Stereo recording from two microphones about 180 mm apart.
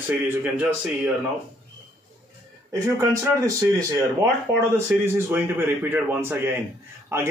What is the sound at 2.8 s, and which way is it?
Speech, 15° right (ahead or behind).